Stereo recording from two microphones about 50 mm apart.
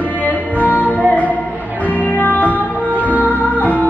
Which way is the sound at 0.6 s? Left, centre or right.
Left.